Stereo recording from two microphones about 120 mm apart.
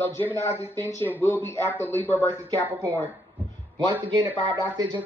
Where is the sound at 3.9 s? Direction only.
40° right (ahead or behind).